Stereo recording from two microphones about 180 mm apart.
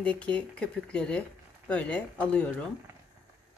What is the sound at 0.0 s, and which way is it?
Speech, 5° left (ahead or behind).